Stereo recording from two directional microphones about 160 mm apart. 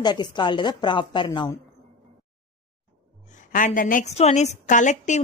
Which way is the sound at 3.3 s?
55° left (ahead or behind).